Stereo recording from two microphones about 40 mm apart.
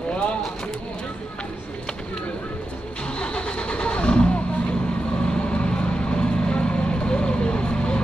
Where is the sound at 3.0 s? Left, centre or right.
Left.